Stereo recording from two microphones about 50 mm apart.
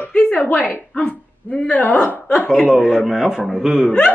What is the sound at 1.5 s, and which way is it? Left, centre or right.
Speech, left.